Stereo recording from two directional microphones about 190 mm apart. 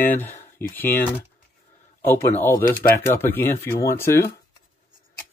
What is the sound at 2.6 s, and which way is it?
Speech, 50° left (ahead or behind).